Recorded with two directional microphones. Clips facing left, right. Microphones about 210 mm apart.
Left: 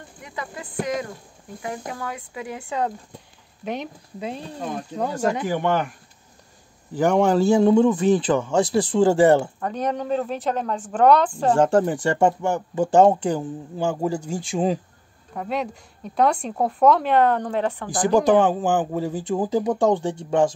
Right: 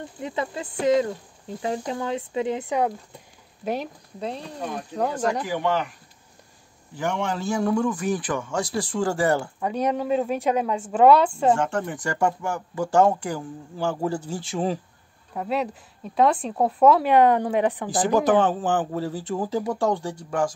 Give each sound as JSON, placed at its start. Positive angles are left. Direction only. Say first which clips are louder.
{"t": 0.2, "sound": "speech", "louder": "right 5 dB", "side_deg": -25}
{"t": 3.6, "sound": "speech", "louder": "right 1 dB", "side_deg": -5}
{"t": 4.9, "sound": "speech", "louder": "left 1 dB", "side_deg": 5}
{"t": 5.5, "sound": "speech", "louder": "left 2 dB", "side_deg": 50}
{"t": 7.0, "sound": "speech", "louder": "left 9 dB", "side_deg": 40}
{"t": 7.4, "sound": "speech", "louder": "left 5 dB", "side_deg": 25}
{"t": 9.6, "sound": "a woman's voice", "louder": "right 1 dB", "side_deg": -10}
{"t": 11.5, "sound": "speech", "louder": "left 7 dB", "side_deg": 35}
{"t": 15.3, "sound": "speech", "louder": "right 1 dB", "side_deg": 0}
{"t": 18.3, "sound": "speech", "louder": "left 2 dB", "side_deg": 10}